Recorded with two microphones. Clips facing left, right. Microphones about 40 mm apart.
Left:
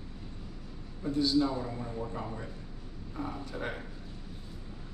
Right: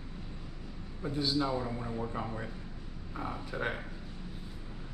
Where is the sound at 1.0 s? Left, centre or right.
Centre.